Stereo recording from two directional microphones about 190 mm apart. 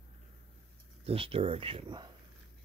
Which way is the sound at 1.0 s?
30° right (ahead or behind).